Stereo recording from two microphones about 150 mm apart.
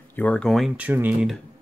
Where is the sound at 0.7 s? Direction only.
10° right (ahead or behind).